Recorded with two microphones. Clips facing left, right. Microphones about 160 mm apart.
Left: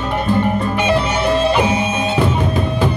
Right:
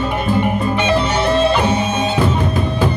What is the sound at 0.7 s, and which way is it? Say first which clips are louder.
Music: even; 10° left (ahead or behind).